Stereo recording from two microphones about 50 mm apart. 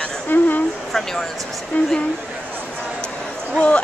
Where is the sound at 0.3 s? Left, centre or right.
Left.